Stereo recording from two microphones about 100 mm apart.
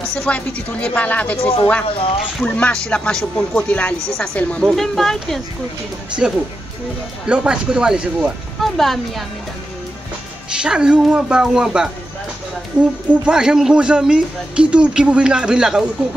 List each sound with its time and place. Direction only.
0.1 s speech: 10° left (ahead or behind)
1.4 s speech: 70° left (ahead or behind)
2.4 s speech: 10° left (ahead or behind); by 8.3 s 10° right (ahead or behind)
8.5 s speech: centre (ahead or behind)
10.5 s speech: 10° right (ahead or behind)